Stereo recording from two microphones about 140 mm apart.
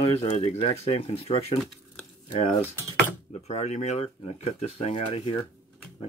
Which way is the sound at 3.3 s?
50° left (ahead or behind).